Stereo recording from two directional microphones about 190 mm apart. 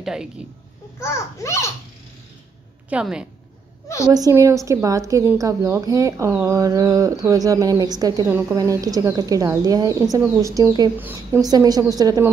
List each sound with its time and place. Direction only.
0.0 s a woman's voice: 5° right (ahead or behind)
0.9 s a child's voice: 15° left (ahead or behind)
2.9 s speech: 5° right (ahead or behind)
4.1 s speech: 15° right (ahead or behind)